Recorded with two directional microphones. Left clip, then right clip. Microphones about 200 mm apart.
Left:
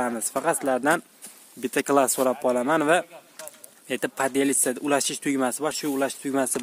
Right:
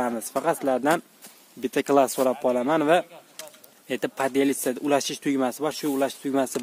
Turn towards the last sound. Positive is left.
turn(degrees=0)  # may be behind; listen again after turning